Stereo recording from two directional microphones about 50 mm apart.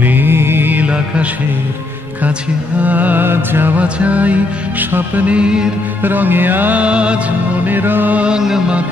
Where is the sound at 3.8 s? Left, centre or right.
Right.